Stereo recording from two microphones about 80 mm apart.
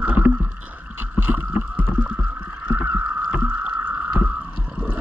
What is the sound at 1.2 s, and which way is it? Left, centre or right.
Boat, right.